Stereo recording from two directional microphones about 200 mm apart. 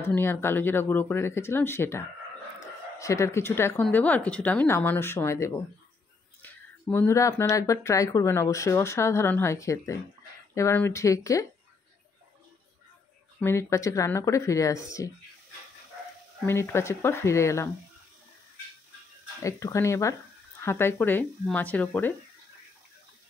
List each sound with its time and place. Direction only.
0.0 s speech: 10° left (ahead or behind)
13.4 s speech: 15° left (ahead or behind)
16.4 s speech: 10° left (ahead or behind)
19.4 s speech: 15° left (ahead or behind)